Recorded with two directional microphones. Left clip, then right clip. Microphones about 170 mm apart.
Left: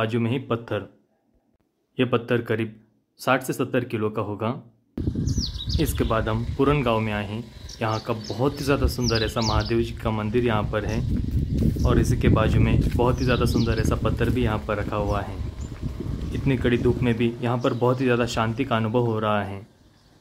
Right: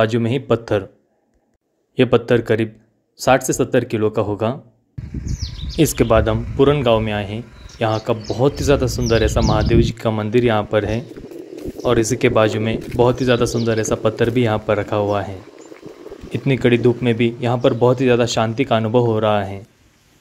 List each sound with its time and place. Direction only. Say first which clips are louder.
0.0 s speech: right 8 dB; 20° right (ahead or behind)
2.0 s speech: right 8 dB; 20° right (ahead or behind)
5.8 s speech: right 10 dB; 30° right (ahead or behind)
6.3 s speech: right 7 dB; 15° right (ahead or behind)
16.4 s speech: right 7 dB; 25° right (ahead or behind)